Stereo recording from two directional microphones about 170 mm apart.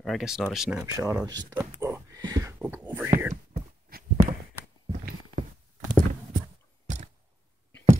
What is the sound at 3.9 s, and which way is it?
Walk, 60° right (ahead or behind).